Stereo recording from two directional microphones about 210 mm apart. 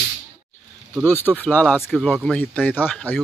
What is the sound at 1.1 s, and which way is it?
Speech, 10° left (ahead or behind).